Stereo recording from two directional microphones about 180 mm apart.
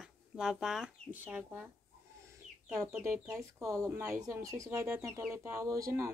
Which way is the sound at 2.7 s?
15° right (ahead or behind).